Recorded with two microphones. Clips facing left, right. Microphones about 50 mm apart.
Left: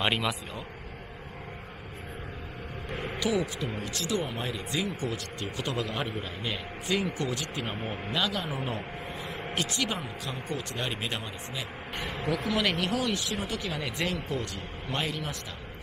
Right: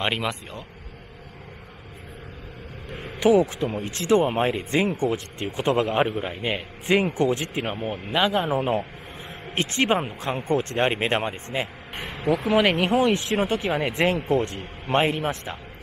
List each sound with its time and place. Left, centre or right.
0.0 s a man's voice: centre
2.9 s a sound: centre
3.2 s speech: right
12.2 s speech: centre
12.4 s speech: right